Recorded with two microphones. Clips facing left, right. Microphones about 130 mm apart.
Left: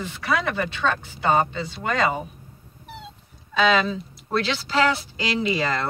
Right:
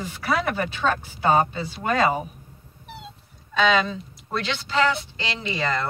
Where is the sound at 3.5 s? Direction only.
Centre (ahead or behind).